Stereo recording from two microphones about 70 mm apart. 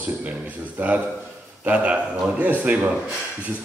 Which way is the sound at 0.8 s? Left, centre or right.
Right.